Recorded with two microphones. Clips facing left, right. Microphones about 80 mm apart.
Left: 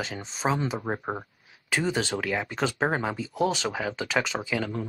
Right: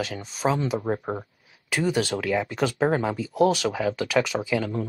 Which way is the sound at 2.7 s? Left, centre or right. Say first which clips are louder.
Right 5 dB; centre.